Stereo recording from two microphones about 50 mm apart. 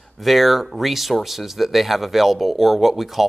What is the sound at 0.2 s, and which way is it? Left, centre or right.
Speech, centre.